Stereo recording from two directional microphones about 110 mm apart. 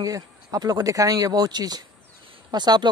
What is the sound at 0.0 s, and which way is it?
Speech, 35° right (ahead or behind).